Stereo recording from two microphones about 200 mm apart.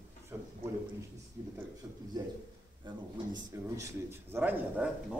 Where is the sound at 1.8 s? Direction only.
20° right (ahead or behind).